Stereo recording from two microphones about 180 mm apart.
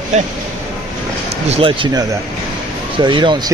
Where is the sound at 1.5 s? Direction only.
30° right (ahead or behind).